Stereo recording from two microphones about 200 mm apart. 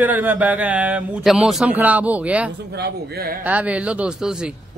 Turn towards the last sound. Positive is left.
turn(degrees=-5)  # may be behind; listen again after turning